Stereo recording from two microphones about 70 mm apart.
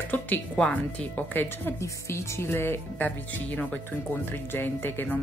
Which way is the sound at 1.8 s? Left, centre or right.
Left.